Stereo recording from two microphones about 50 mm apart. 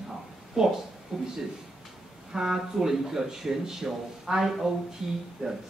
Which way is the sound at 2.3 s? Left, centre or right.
Centre.